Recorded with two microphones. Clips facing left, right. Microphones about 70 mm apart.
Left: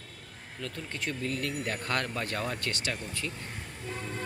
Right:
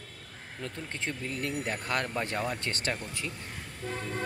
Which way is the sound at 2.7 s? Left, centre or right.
Right.